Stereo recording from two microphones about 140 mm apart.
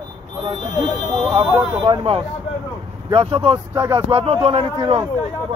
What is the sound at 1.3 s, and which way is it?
A man's voice, 45° right (ahead or behind).